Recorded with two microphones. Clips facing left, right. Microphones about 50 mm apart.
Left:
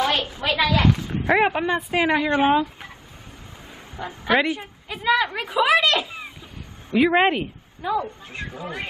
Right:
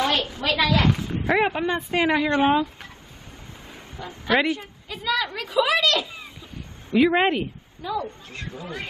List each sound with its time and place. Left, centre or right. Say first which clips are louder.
0.0 s a woman's voice: left 1 dB; centre
3.9 s a man's voice: left 1 dB; centre
6.9 s speech: left 1 dB; centre